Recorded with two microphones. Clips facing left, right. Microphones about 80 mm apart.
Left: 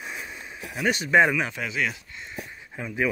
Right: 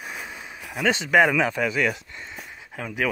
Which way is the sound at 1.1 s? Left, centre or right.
Right.